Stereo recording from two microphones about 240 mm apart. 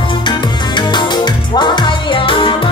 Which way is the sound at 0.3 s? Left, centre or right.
Centre.